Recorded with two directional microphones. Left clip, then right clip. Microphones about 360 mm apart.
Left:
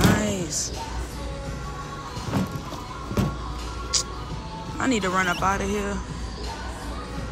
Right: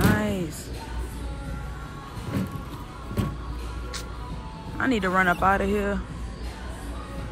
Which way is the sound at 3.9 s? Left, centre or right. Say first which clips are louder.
Left 12 dB; centre.